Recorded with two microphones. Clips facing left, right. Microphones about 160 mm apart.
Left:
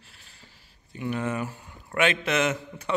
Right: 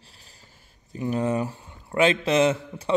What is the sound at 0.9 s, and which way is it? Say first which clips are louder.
A man's voice: right 4 dB; 35° right (ahead or behind).